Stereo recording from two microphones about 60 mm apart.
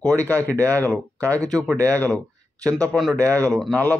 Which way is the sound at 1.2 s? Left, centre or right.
Left.